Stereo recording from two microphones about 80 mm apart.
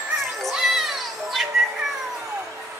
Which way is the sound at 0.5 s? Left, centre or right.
Centre.